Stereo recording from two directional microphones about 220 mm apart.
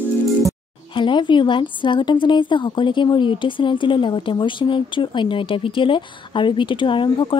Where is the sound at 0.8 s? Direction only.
20° left (ahead or behind).